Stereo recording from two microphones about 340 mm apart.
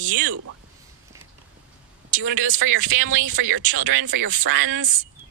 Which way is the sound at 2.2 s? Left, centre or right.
Right.